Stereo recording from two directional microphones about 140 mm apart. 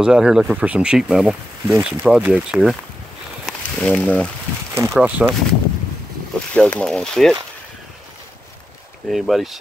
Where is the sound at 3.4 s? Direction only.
10° left (ahead or behind).